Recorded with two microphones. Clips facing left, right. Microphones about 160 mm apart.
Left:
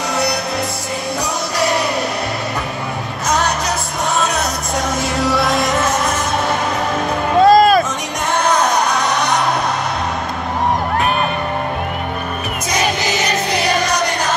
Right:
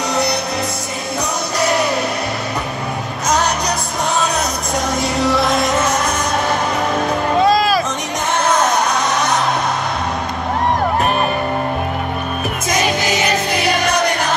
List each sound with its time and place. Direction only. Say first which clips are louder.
0.1 s music: even; centre (ahead or behind)
1.6 s music: right 1 dB; centre (ahead or behind)
3.3 s music: right 1 dB; centre (ahead or behind)
4.9 s music: right 1 dB; centre (ahead or behind)
7.4 s music: left 7 dB; 50° left (ahead or behind)
8.5 s music: even; centre (ahead or behind)